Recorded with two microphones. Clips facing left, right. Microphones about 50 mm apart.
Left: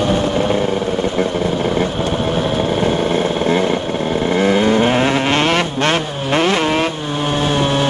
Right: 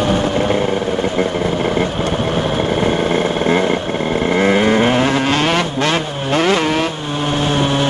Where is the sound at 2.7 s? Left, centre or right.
Right.